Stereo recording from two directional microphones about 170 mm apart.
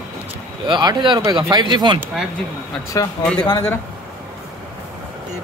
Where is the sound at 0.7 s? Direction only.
25° right (ahead or behind).